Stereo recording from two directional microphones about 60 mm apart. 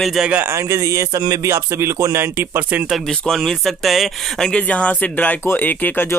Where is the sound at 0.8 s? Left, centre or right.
Right.